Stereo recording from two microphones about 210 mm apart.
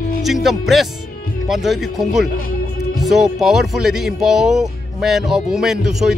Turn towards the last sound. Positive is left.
turn(degrees=0)  # may be behind; listen again after turning